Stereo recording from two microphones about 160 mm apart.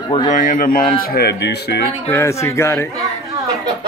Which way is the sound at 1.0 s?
75° left (ahead or behind).